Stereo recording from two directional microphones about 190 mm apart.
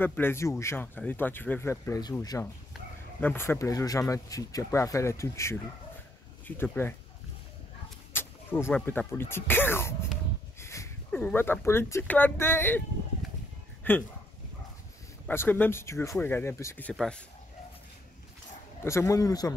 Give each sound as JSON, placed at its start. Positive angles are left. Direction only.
{"t": 0.0, "sound": "speech", "side_deg": 10}
{"t": 8.1, "sound": "speech", "side_deg": 10}
{"t": 13.9, "sound": "speech", "side_deg": 10}
{"t": 15.2, "sound": "speech", "side_deg": 10}
{"t": 18.9, "sound": "speech", "side_deg": 15}